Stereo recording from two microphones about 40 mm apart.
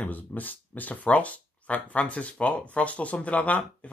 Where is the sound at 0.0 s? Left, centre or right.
Left.